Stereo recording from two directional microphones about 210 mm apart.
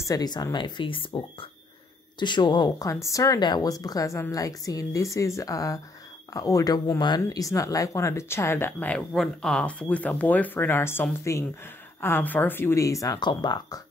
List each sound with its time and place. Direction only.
0.0 s speech: 20° left (ahead or behind)